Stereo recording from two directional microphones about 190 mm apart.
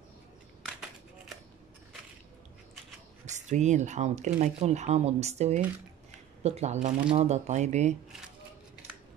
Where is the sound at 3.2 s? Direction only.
40° right (ahead or behind).